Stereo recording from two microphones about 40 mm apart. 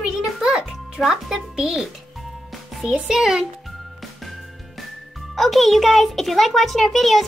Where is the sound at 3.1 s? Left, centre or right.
Centre.